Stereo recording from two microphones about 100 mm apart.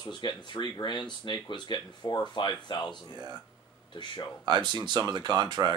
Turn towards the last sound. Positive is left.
turn(degrees=-45)  # may be behind; listen again after turning